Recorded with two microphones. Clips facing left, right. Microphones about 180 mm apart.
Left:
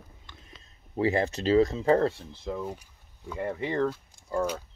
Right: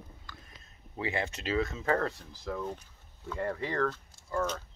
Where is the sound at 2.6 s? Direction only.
10° left (ahead or behind).